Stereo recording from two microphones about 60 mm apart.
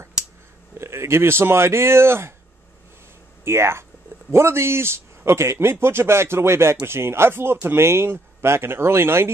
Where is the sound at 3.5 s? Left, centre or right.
Right.